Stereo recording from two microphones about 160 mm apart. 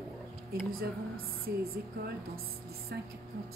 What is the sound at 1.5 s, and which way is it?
Speech, 80° right.